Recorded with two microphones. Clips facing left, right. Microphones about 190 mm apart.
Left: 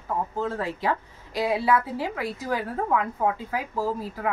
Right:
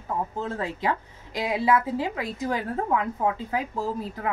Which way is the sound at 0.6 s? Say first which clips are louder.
Even; 20° right (ahead or behind).